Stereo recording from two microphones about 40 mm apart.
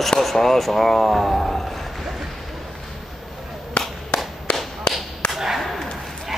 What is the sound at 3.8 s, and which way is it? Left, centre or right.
Whip, left.